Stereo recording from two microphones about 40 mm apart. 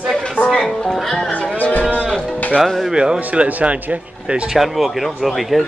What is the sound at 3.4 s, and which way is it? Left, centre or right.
Speech, right.